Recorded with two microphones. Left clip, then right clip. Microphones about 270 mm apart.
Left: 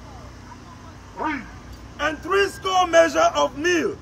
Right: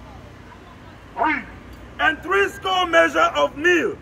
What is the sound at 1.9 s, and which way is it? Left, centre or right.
A man's voice, centre.